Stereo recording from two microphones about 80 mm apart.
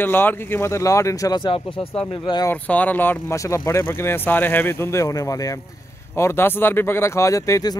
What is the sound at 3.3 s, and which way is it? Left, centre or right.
Speech, left.